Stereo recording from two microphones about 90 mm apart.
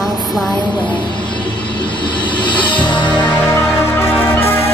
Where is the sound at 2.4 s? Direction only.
65° left (ahead or behind).